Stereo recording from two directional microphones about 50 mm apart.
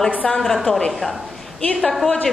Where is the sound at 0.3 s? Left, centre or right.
Centre.